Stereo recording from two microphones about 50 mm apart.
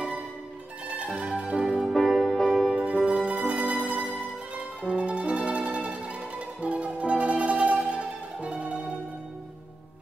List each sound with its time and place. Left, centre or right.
0.9 s music: right
1.9 s music: centre
2.7 s music: right
3.7 s music: centre
4.8 s music: right
6.6 s mandolin: right